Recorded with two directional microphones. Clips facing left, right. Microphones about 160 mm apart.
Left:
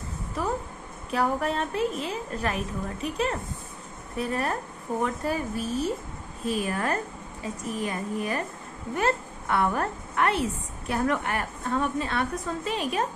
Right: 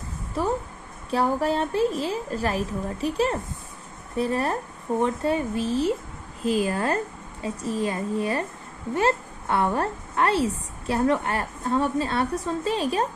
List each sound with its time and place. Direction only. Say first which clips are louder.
1.1 s a woman's voice: right 3 dB; 30° right (ahead or behind)